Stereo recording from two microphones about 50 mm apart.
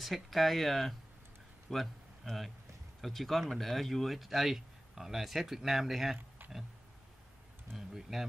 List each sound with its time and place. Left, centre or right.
0.0 s a man's voice: centre
6.1 s a sound: right
7.7 s speech: centre